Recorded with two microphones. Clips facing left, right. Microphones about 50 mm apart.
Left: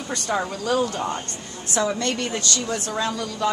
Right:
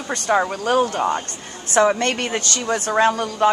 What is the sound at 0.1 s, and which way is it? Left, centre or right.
A woman's voice, right.